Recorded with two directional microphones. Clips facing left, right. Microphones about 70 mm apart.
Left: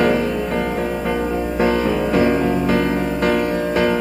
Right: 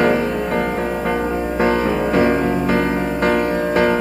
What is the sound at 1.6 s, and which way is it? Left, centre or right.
Music, right.